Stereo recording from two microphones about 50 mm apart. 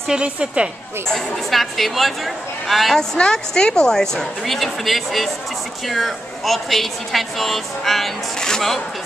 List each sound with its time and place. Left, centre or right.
0.1 s a woman's voice: centre
1.0 s a woman's voice: centre
3.0 s a woman's voice: centre